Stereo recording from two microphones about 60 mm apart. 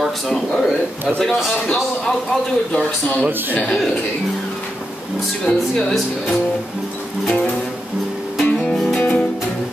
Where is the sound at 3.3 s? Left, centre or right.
Right.